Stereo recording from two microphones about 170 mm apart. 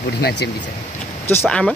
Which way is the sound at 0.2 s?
85° left.